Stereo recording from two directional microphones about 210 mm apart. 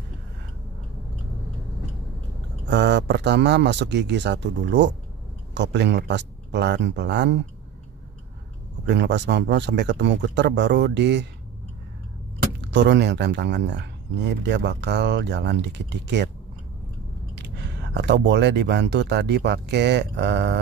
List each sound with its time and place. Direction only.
2.7 s speech: 55° right (ahead or behind)
8.8 s speech: 55° right (ahead or behind)
12.7 s speech: 55° right (ahead or behind)
17.4 s speech: 55° right (ahead or behind)